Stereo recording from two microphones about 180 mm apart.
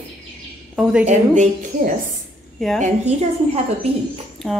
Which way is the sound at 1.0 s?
40° right (ahead or behind).